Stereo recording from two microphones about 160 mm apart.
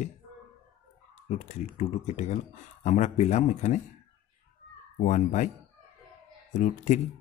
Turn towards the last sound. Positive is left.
turn(degrees=50)  # may be behind; listen again after turning